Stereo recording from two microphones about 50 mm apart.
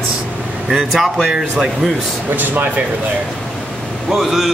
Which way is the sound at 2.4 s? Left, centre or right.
Right.